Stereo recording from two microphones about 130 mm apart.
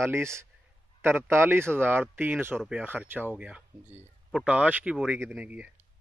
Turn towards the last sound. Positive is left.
turn(degrees=-10)  # may be behind; listen again after turning